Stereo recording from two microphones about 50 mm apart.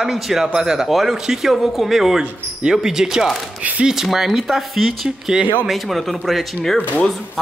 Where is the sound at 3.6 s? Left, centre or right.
Right.